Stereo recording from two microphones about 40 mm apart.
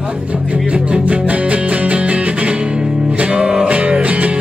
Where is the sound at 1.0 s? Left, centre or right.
Right.